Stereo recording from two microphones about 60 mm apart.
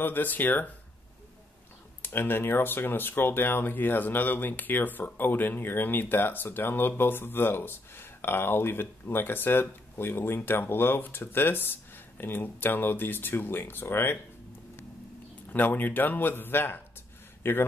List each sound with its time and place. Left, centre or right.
0.0 s speech: left
2.0 s speech: left
15.5 s a man's voice: left